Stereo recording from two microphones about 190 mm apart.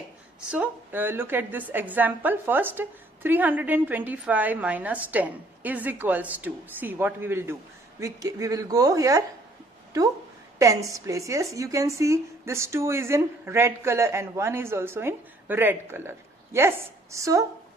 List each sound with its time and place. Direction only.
0.5 s a woman's voice: 10° right (ahead or behind)
10.6 s a woman's voice: 15° right (ahead or behind)